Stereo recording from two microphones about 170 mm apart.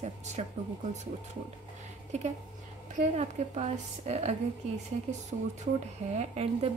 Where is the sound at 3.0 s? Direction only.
40° right (ahead or behind).